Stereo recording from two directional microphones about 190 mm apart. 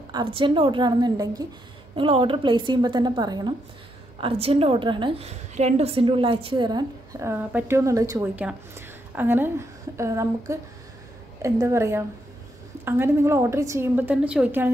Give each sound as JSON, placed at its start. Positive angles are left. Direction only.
{"t": 0.1, "sound": "a woman's voice", "side_deg": -25}
{"t": 4.2, "sound": "a woman's voice", "side_deg": -30}